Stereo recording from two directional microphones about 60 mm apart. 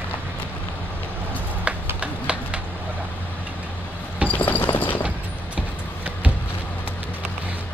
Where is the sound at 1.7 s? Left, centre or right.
Right.